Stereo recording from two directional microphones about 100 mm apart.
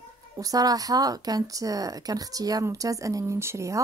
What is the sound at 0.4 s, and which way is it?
A woman's voice, 40° right (ahead or behind).